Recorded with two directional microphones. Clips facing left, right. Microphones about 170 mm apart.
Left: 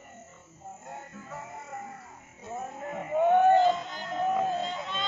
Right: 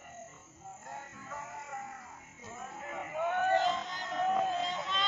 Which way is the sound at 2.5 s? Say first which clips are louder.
Left 7 dB; 40° left (ahead or behind).